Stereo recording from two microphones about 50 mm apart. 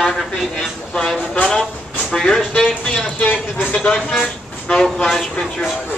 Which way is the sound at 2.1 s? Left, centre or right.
Centre.